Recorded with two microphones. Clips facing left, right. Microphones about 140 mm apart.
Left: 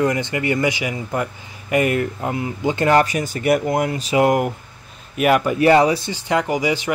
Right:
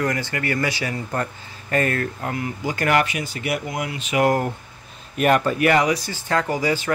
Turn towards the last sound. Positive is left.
turn(degrees=15)  # may be behind; listen again after turning